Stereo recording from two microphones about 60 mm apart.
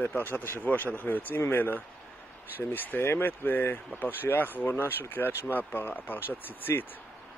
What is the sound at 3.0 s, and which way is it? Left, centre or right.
Speech, left.